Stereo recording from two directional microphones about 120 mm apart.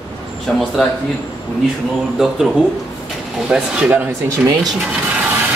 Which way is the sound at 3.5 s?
5° right (ahead or behind).